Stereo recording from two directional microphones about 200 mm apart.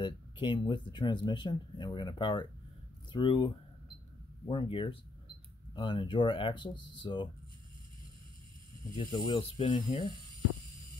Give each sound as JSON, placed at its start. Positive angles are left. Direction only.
{"t": 0.0, "sound": "speech", "side_deg": 25}
{"t": 8.9, "sound": "speech", "side_deg": 25}